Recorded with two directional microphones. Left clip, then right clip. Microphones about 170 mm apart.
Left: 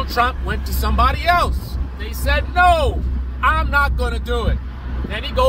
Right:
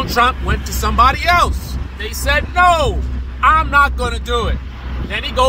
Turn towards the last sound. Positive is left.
turn(degrees=-20)  # may be behind; listen again after turning